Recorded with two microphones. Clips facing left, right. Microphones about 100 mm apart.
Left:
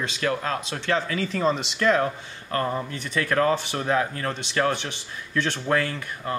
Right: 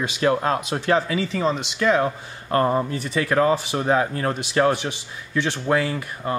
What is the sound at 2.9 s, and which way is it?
Speech, 10° right (ahead or behind).